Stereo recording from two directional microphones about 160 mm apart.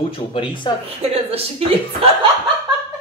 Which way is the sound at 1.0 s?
40° right (ahead or behind).